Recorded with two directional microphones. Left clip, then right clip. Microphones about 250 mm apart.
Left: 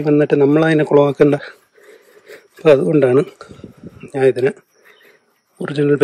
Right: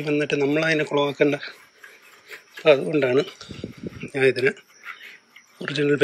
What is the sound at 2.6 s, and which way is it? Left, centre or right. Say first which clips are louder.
Speech: left 7 dB; centre.